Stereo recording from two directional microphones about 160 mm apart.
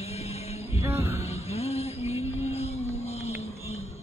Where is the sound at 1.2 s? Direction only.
40° left (ahead or behind).